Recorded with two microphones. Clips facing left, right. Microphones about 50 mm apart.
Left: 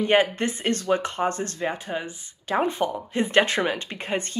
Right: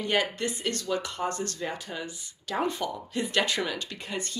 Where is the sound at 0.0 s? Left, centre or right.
Left.